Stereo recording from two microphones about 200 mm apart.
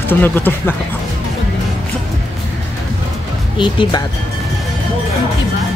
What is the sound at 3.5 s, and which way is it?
Speech, 25° left (ahead or behind).